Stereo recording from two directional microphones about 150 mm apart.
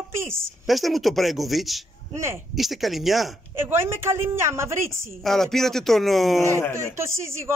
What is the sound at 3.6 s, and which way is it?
A woman's voice, 15° right (ahead or behind).